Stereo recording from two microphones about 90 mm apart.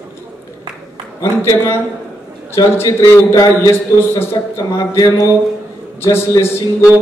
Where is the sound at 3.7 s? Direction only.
30° left (ahead or behind).